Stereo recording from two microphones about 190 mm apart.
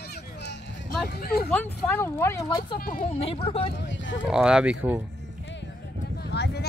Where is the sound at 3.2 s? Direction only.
30° left (ahead or behind).